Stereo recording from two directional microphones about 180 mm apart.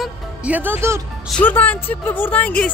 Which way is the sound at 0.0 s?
5° right (ahead or behind).